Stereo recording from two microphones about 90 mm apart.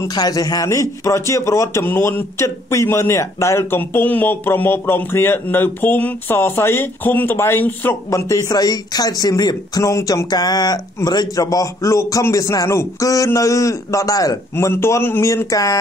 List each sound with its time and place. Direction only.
0.1 s a man's voice: 45° left (ahead or behind)
9.8 s a man's voice: 35° left (ahead or behind)
10.3 s a man's voice: 50° left (ahead or behind)
14.5 s a man's voice: 25° left (ahead or behind)